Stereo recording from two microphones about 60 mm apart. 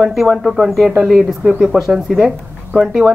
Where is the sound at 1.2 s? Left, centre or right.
Centre.